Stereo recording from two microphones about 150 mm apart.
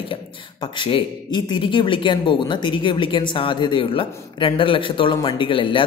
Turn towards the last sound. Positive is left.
turn(degrees=35)  # may be behind; listen again after turning